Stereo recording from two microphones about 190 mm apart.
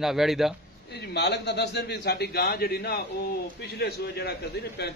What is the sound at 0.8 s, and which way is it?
A man's voice, 60° left (ahead or behind).